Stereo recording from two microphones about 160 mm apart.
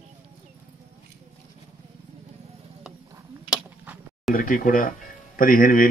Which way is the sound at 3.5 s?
10° right (ahead or behind).